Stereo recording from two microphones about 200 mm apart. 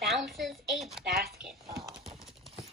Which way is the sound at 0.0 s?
Centre (ahead or behind).